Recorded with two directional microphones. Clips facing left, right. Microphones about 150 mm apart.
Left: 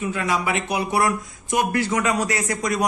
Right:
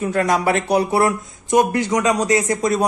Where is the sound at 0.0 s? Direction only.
45° right (ahead or behind).